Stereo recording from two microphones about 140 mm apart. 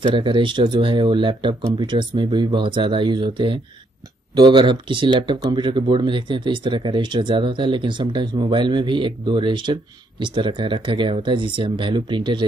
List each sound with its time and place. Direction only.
0.0 s speech: 35° right (ahead or behind)